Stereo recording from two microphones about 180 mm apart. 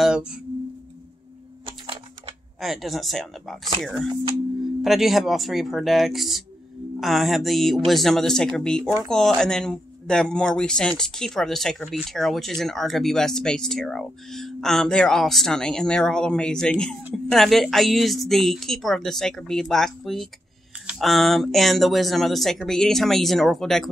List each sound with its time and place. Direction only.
0.0 s tuning fork: 5° right (ahead or behind)
1.7 s typewriter: 30° right (ahead or behind)
2.6 s speech: centre (ahead or behind)